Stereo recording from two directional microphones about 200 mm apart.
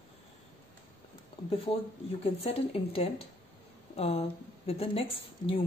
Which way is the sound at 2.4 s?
30° left (ahead or behind).